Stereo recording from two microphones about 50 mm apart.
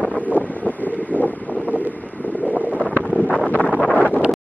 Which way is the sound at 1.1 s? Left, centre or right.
Left.